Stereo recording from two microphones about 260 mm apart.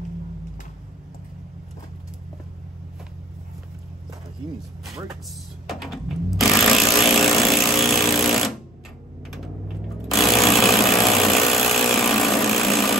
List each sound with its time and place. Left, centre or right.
4.8 s speech: centre
5.7 s jackhammer: centre
10.0 s jackhammer: centre